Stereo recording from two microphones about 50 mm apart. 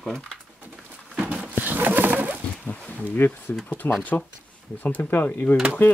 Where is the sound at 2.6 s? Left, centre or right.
Left.